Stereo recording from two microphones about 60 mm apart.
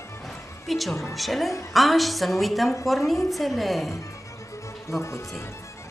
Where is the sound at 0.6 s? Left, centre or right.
Centre.